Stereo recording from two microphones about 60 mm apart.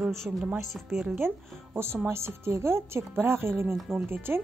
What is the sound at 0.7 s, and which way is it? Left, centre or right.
Speech, centre.